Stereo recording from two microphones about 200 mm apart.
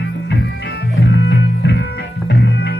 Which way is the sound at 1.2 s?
60° left (ahead or behind).